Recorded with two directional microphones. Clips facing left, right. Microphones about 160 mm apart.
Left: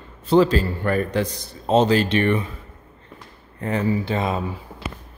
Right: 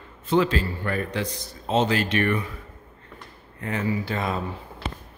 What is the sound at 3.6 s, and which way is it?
Speech, 35° left (ahead or behind).